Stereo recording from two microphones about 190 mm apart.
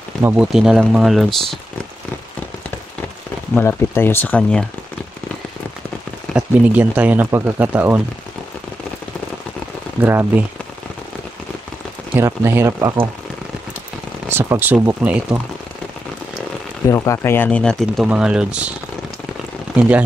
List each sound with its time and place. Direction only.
0.2 s speech: 5° right (ahead or behind)
3.5 s speech: 10° left (ahead or behind)
6.3 s speech: 10° right (ahead or behind)
9.9 s speech: 10° right (ahead or behind)
12.2 s speech: 15° right (ahead or behind)
14.3 s speech: 10° right (ahead or behind)
16.8 s speech: 15° left (ahead or behind); by 18.7 s 5° right (ahead or behind)